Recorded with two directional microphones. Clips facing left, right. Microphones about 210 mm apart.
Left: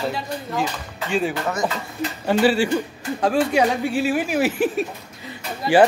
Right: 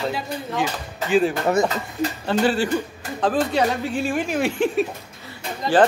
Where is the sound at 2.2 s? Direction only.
10° left (ahead or behind).